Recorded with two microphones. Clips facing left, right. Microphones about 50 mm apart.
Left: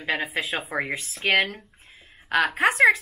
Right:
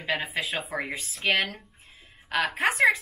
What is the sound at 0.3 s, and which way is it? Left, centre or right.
Speech, centre.